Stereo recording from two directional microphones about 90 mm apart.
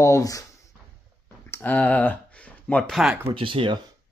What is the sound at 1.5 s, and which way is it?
Speech, 20° left (ahead or behind).